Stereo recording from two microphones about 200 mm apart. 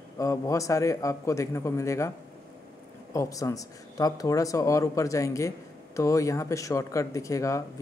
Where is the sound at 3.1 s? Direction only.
15° left (ahead or behind).